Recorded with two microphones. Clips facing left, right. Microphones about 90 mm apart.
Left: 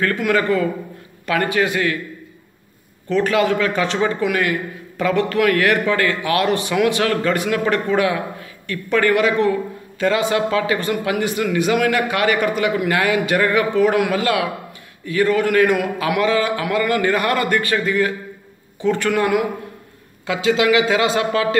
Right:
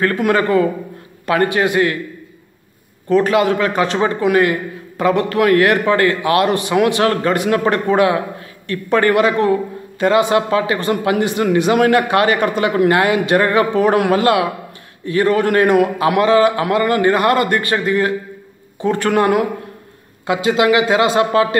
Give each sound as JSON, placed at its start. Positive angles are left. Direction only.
{"t": 0.4, "sound": "a man's voice", "side_deg": -30}
{"t": 3.2, "sound": "a man's voice", "side_deg": -30}
{"t": 12.3, "sound": "a man's voice", "side_deg": -30}
{"t": 13.5, "sound": "a man's voice", "side_deg": -55}
{"t": 18.8, "sound": "speech", "side_deg": -45}
{"t": 20.2, "sound": "a man's voice", "side_deg": -30}